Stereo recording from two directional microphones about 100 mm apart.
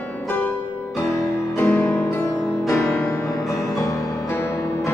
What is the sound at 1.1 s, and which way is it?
Music, 30° left (ahead or behind).